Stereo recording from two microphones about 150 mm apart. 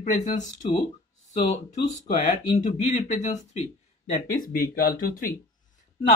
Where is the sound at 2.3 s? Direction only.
55° left (ahead or behind).